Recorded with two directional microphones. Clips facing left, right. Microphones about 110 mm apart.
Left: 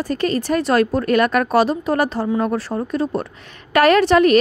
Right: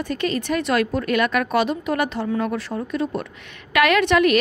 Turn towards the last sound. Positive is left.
turn(degrees=35)  # may be behind; listen again after turning